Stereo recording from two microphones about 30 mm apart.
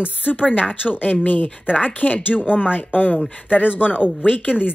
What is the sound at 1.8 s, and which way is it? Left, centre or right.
Speech, left.